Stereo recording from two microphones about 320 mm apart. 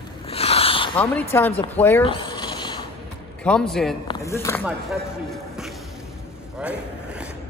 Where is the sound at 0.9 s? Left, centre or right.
Centre.